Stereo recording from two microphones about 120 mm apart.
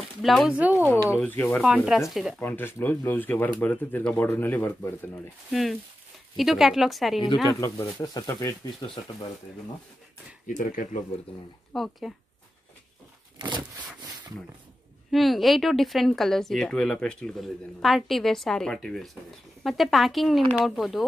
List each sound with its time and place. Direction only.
0.2 s speech: centre (ahead or behind)
0.6 s speech: 15° right (ahead or behind)
1.2 s speech: 15° left (ahead or behind)
1.6 s speech: 5° right (ahead or behind)
2.4 s speech: 20° left (ahead or behind)
5.5 s speech: centre (ahead or behind)
7.4 s speech: 30° left (ahead or behind)
10.4 s speech: 90° left
11.7 s speech: centre (ahead or behind)
13.4 s a sound: 40° right (ahead or behind)
15.0 s speech: centre (ahead or behind)